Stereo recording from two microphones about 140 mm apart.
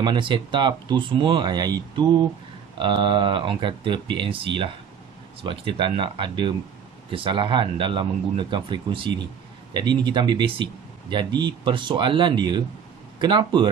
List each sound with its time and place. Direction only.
0.0 s speech: 35° right (ahead or behind)